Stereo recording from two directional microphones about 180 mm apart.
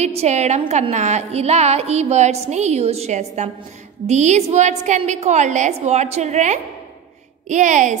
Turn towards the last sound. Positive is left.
turn(degrees=-45)  # may be behind; listen again after turning